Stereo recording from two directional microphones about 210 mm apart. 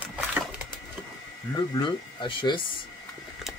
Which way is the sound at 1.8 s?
25° left (ahead or behind).